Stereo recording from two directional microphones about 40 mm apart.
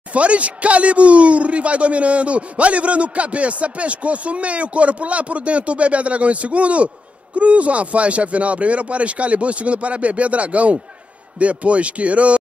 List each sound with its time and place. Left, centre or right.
0.1 s speech: right